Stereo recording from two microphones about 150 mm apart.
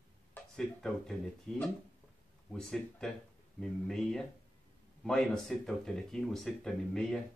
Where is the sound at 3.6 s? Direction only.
5° left (ahead or behind).